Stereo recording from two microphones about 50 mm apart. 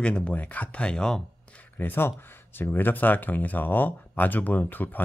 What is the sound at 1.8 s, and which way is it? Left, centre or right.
Speech, left.